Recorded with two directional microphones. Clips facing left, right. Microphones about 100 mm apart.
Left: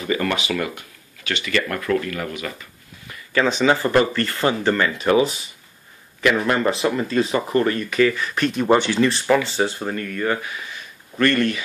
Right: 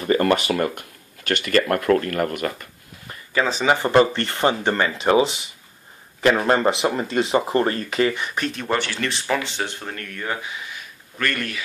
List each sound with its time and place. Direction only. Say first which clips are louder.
0.0 s speech: right 4 dB; 45° right (ahead or behind)
3.6 s speech: right 2 dB; 20° right (ahead or behind)
8.5 s speech: left 11 dB; 15° left (ahead or behind)
9.0 s speech: left 6 dB; 5° left (ahead or behind)
10.2 s speech: left 3 dB; 10° right (ahead or behind)